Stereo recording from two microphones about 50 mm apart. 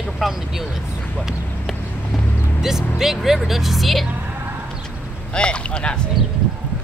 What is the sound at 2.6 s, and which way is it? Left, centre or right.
Speech, centre.